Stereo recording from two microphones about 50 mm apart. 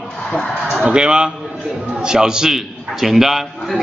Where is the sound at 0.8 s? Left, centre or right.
Centre.